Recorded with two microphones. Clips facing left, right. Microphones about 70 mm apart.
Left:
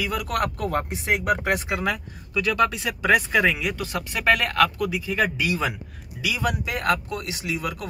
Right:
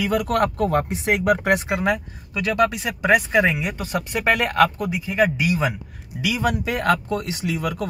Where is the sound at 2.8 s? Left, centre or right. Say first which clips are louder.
Right 2 dB; centre; by 5.0 s right.